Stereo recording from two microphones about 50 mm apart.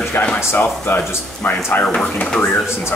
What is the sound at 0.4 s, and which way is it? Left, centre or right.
Speech, left.